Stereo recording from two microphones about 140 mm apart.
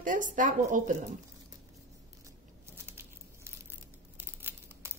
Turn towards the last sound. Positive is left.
turn(degrees=-15)  # may be behind; listen again after turning